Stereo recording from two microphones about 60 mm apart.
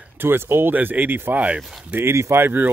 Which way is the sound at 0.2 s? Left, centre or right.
Right.